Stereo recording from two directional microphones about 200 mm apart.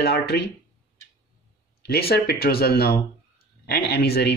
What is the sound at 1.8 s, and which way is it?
Speech, 50° left (ahead or behind).